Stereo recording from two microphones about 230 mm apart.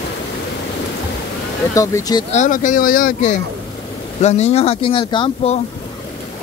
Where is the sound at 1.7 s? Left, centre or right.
Centre.